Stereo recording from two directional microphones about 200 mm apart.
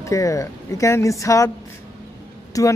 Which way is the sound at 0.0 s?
15° left (ahead or behind).